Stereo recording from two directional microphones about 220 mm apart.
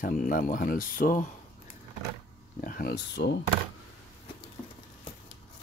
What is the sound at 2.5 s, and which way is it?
Speech, 40° left (ahead or behind).